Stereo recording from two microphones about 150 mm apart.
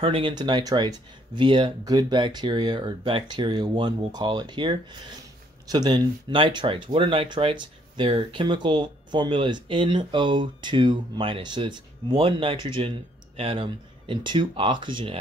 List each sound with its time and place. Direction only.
0.0 s speech: 35° right (ahead or behind)